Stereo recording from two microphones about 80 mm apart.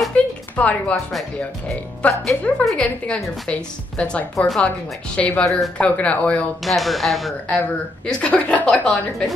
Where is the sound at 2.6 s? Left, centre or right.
Centre.